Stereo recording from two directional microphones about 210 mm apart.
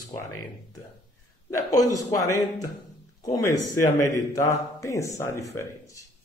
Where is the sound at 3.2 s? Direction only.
15° left (ahead or behind).